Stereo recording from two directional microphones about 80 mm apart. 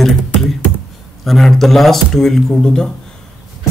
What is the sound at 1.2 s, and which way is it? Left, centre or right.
Speech, centre.